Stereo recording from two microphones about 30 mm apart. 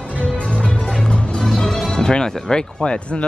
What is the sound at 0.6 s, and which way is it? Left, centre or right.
Music, left.